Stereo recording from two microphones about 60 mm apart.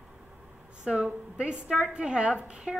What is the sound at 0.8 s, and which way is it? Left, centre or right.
A woman's voice, centre.